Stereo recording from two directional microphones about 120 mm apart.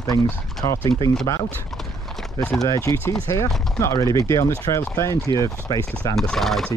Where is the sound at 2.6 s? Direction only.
25° left (ahead or behind).